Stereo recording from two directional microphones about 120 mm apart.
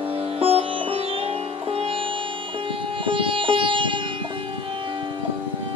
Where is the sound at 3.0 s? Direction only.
45° right (ahead or behind).